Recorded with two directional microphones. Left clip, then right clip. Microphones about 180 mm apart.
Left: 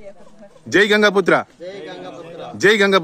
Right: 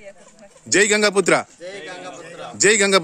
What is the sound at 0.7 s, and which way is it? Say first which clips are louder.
Speech: left 3 dB; 15° right (ahead or behind).